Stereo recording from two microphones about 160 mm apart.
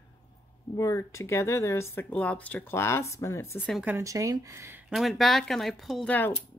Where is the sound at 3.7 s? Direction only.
10° right (ahead or behind).